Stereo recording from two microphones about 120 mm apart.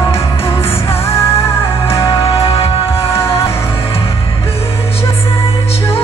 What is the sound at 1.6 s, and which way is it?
Music, 50° left (ahead or behind).